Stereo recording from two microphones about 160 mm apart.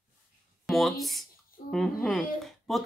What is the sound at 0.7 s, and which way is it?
Speech, centre (ahead or behind).